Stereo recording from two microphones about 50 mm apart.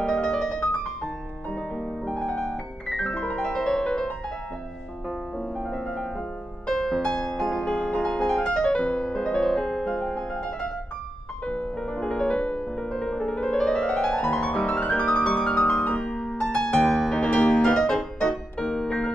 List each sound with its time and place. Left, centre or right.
0.0 s music: centre
2.9 s piano: centre
5.6 s music: centre
16.8 s music: centre
17.2 s music: centre